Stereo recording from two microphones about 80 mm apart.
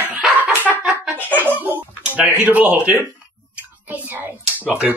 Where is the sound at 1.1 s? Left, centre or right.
Right.